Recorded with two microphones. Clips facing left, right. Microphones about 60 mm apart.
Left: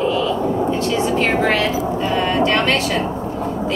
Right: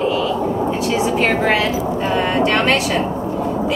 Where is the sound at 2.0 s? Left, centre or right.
Right.